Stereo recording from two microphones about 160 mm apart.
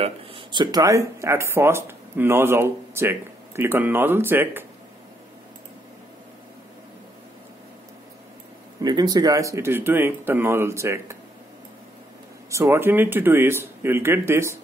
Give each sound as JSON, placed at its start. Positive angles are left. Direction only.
{"t": 0.0, "sound": "speech", "side_deg": -35}
{"t": 8.8, "sound": "speech", "side_deg": -25}
{"t": 12.4, "sound": "speech", "side_deg": -20}